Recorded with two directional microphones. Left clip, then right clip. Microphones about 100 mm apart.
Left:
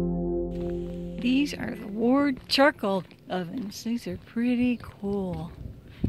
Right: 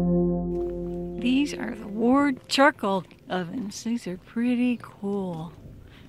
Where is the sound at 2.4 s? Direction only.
20° right (ahead or behind).